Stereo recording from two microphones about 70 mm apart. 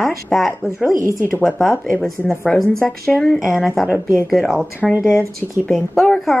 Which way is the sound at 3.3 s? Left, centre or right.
Centre.